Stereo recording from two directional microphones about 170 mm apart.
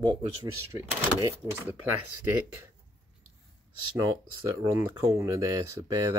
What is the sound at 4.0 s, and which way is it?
Speech, 15° right (ahead or behind).